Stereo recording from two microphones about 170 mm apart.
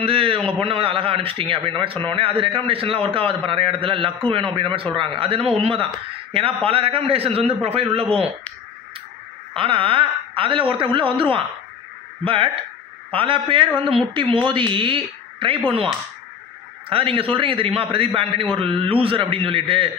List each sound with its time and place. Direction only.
0.0 s a man's voice: 35° right (ahead or behind)
9.6 s a man's voice: 30° right (ahead or behind)
13.1 s a man's voice: 30° right (ahead or behind)
16.9 s a man's voice: 30° right (ahead or behind)